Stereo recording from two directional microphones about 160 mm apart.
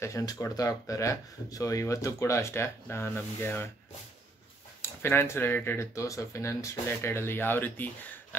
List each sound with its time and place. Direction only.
0.0 s speech: 20° left (ahead or behind)
5.0 s speech: 15° left (ahead or behind)